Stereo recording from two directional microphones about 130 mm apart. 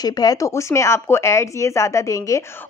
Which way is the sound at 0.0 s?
30° left (ahead or behind).